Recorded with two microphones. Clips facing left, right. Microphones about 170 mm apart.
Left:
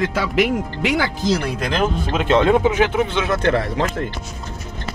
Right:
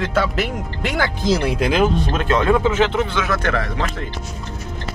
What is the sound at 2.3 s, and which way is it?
Speech, 25° left (ahead or behind).